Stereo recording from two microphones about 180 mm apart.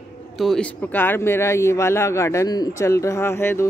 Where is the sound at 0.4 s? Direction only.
5° left (ahead or behind).